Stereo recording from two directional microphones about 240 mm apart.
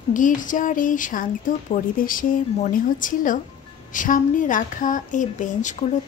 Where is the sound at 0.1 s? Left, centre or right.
Left.